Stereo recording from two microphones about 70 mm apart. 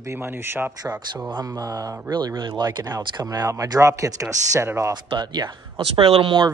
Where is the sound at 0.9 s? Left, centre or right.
Centre.